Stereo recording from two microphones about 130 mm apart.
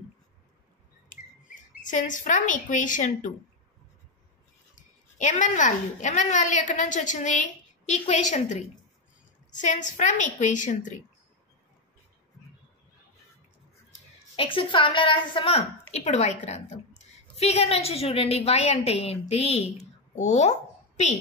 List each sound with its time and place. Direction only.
1.0 s speech: 85° left
4.7 s a woman's voice: 75° left (ahead or behind)
9.5 s a woman's voice: 75° left (ahead or behind)
14.3 s a woman's voice: 45° left (ahead or behind)
15.9 s a woman's voice: 55° left (ahead or behind)